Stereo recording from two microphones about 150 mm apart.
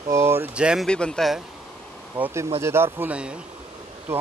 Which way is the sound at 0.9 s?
5° left (ahead or behind).